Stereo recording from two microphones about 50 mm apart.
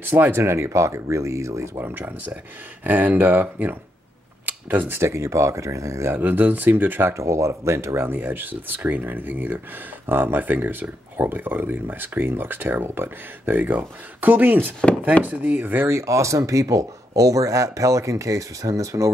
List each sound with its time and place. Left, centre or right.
0.0 s speech: right
0.4 s speech: right
1.8 s speech: right
4.5 s camera: right
4.9 s speech: right
6.1 s speech: right
7.2 s speech: right
8.1 s speech: right
15.9 s speech: right